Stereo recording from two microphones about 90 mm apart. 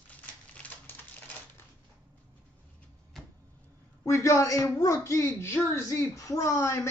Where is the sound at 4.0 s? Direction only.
30° left (ahead or behind).